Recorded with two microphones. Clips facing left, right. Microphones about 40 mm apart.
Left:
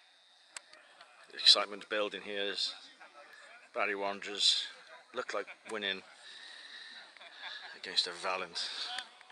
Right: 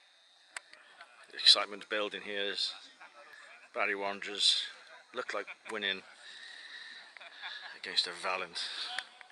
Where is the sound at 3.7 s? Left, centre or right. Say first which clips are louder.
Right 1 dB; centre.